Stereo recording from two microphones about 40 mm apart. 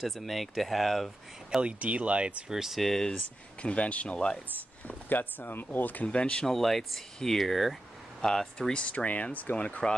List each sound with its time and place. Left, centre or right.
0.0 s speech: centre
1.6 s speech: right
2.5 s speech: centre
2.8 s speech: centre
3.2 s speech: left
4.8 s speech: left
6.0 s speech: left
6.4 s speech: centre
8.7 s speech: left